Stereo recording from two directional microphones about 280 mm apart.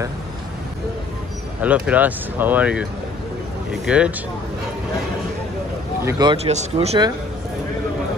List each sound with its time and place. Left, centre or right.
1.6 s speech: centre
6.0 s speech: centre